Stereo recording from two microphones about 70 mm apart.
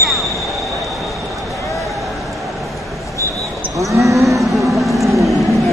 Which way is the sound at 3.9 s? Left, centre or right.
Right.